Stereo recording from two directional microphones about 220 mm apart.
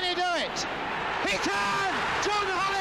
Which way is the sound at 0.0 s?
Centre (ahead or behind).